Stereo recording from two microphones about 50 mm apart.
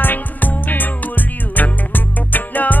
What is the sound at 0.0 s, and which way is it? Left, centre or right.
Music, left.